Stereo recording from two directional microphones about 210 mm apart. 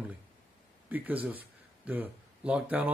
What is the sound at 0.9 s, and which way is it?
Speech, 10° right (ahead or behind).